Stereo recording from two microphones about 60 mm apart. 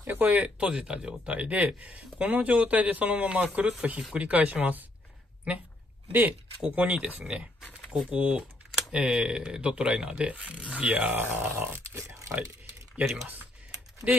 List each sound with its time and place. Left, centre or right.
0.0 s speech: right
7.9 s speech: centre; by 12.0 s right
13.0 s speech: centre
14.0 s speech: right